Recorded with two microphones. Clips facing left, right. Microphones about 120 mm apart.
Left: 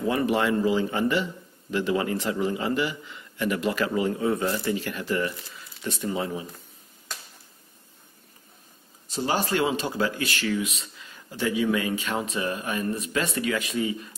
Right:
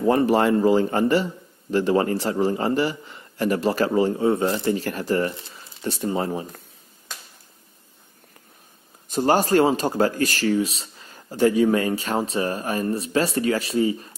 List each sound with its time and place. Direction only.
0.0 s speech: 40° right (ahead or behind)
4.7 s speech: 40° right (ahead or behind)
9.1 s speech: 45° right (ahead or behind)